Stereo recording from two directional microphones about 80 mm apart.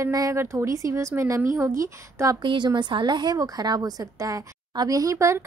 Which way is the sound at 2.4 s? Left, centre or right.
Right.